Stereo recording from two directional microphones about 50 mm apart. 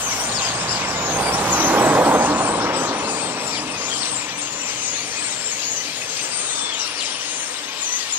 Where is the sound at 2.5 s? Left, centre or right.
Right.